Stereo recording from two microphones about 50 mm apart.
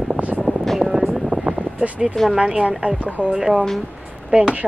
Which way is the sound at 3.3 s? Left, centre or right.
Centre.